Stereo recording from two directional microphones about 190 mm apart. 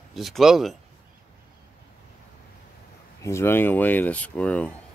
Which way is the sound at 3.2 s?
15° left (ahead or behind).